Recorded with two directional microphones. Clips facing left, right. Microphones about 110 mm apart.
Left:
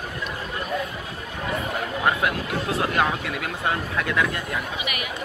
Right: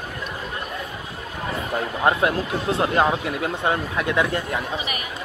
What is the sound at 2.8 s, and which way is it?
Speech, 25° right (ahead or behind).